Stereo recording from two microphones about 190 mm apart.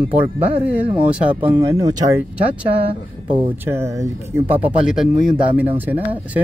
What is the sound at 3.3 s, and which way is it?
Speech, 15° right (ahead or behind).